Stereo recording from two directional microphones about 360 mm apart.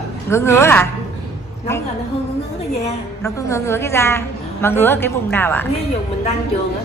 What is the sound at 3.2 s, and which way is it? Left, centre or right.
A woman's voice, centre.